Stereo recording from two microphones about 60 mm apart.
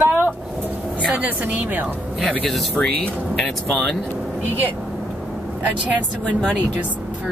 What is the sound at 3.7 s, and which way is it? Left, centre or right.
Speech, centre.